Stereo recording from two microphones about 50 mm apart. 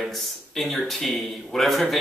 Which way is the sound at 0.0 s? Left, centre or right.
Centre.